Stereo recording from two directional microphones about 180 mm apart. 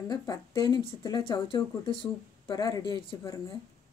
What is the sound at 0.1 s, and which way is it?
Speech, 25° left (ahead or behind).